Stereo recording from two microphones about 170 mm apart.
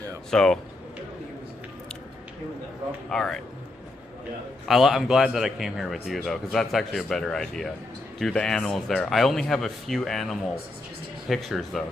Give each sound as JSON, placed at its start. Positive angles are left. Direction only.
{"t": 0.3, "sound": "speech", "side_deg": 5}
{"t": 3.1, "sound": "speech", "side_deg": 5}
{"t": 4.6, "sound": "speech", "side_deg": 0}